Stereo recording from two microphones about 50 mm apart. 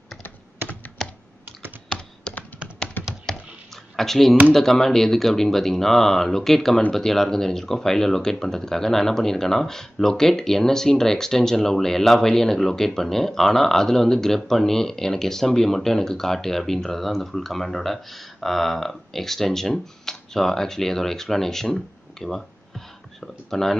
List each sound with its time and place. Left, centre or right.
1.9 s computer keyboard: centre
3.3 s a sound: centre
4.6 s speech: centre